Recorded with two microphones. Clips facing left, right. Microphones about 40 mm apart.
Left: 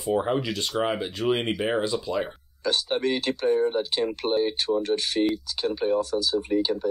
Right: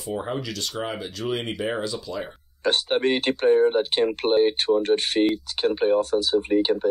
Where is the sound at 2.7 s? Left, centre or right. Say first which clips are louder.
Right 3 dB; right.